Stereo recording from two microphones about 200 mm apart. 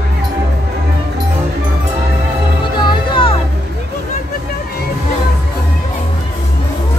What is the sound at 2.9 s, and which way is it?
Music, 25° left (ahead or behind).